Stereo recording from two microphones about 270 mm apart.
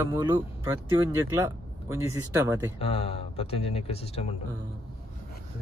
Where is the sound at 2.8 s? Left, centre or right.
Left.